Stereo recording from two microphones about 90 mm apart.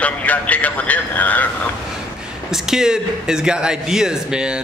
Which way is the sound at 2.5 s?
5° right (ahead or behind).